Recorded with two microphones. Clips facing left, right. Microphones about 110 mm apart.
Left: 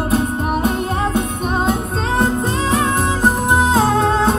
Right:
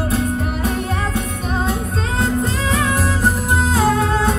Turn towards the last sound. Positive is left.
turn(degrees=25)  # may be behind; listen again after turning